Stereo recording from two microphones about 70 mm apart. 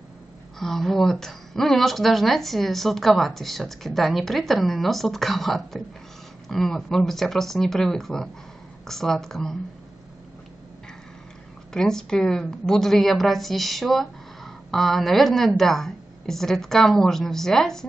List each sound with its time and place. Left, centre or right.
0.6 s a woman's voice: centre
11.7 s a woman's voice: centre